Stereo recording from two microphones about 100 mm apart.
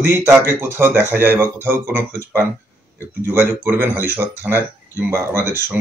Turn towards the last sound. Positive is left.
turn(degrees=-25)  # may be behind; listen again after turning